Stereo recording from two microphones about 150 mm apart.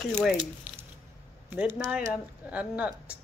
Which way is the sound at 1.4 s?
10° right (ahead or behind).